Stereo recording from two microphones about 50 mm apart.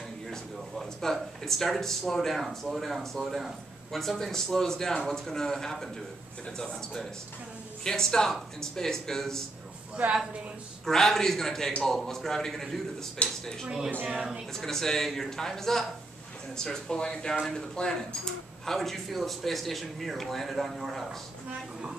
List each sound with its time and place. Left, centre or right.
0.3 s a man's voice: centre
10.9 s a man's voice: centre
13.2 s speech: left
14.5 s a man's voice: centre
18.8 s speech: centre